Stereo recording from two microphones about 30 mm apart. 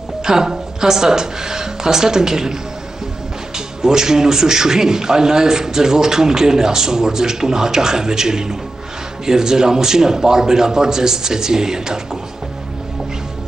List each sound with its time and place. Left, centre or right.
0.2 s a man's voice: centre
3.5 s a man's voice: right